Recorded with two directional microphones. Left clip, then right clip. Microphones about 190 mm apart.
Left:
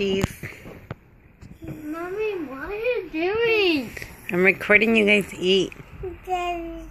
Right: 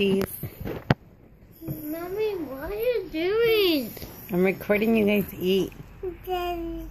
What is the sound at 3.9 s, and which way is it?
Speech, centre (ahead or behind).